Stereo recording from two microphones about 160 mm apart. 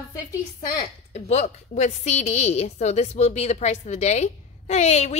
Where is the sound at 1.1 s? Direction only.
40° left (ahead or behind).